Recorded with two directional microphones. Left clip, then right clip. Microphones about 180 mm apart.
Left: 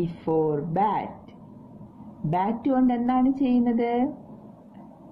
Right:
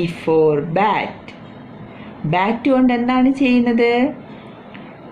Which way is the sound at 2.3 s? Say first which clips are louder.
Right 8 dB; 20° left (ahead or behind).